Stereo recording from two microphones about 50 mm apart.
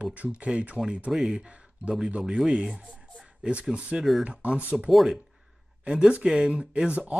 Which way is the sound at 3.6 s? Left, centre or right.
Right.